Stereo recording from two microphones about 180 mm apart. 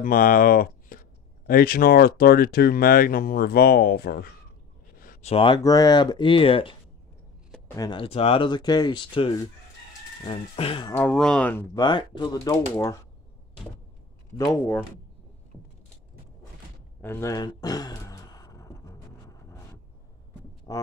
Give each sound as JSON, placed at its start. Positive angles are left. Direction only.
{"t": 0.0, "sound": "speech", "side_deg": 50}
{"t": 5.2, "sound": "speech", "side_deg": 30}
{"t": 5.6, "sound": "speech", "side_deg": 20}
{"t": 10.9, "sound": "speech", "side_deg": 10}
{"t": 11.8, "sound": "speech", "side_deg": 25}
{"t": 14.3, "sound": "speech", "side_deg": 15}
{"t": 17.0, "sound": "a sound", "side_deg": 15}
{"t": 20.7, "sound": "a sound", "side_deg": 20}